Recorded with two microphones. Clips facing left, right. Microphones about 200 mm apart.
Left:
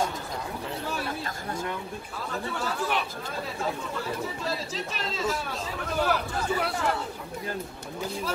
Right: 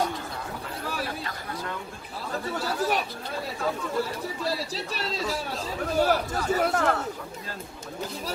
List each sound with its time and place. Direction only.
2.5 s speech: 40° right (ahead or behind)
4.5 s speech: 35° right (ahead or behind)